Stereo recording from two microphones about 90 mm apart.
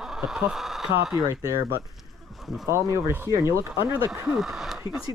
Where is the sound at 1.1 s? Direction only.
35° right (ahead or behind).